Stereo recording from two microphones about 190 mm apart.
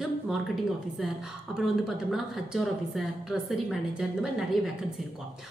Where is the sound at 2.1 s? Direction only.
Centre (ahead or behind).